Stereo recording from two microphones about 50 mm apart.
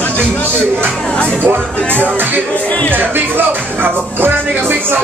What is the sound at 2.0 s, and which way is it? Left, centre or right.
Music, right.